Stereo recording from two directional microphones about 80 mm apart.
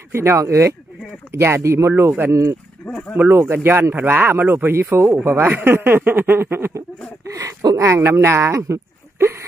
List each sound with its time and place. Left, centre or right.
0.1 s speech: right
7.2 s speech: right